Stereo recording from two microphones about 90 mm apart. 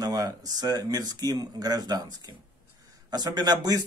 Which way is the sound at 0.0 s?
45° right (ahead or behind).